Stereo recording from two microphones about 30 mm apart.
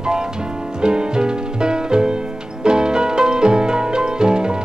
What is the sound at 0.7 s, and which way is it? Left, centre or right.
Music, right.